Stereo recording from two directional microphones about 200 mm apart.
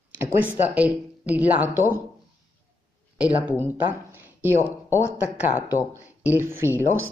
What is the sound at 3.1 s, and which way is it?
Speech, 5° right (ahead or behind).